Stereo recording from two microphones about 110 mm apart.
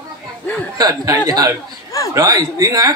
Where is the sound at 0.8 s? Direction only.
35° right (ahead or behind).